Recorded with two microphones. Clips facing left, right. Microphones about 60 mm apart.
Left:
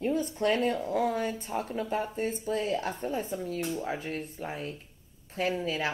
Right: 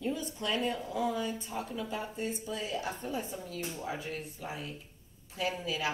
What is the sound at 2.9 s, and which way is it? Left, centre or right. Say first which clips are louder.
Speech: left 5 dB; left.